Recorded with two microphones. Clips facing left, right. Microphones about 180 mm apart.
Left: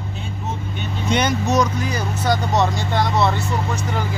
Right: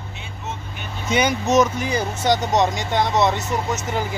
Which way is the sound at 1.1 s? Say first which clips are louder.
Even; 5° right (ahead or behind).